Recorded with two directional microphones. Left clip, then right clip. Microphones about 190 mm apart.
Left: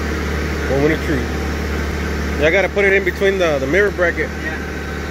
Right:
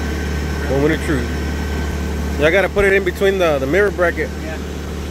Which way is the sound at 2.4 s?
10° right (ahead or behind).